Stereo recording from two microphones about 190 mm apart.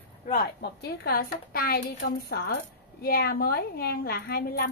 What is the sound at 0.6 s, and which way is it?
Speech, 55° left (ahead or behind).